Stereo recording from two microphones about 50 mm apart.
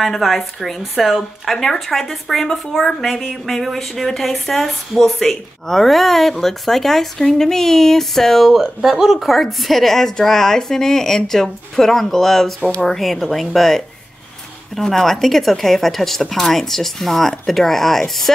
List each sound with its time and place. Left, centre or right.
0.0 s speech: centre